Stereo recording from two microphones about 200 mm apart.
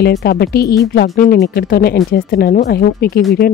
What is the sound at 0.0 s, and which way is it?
Speech, 55° left (ahead or behind).